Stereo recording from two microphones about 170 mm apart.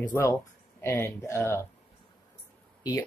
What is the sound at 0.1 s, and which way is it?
Speech, 15° left (ahead or behind).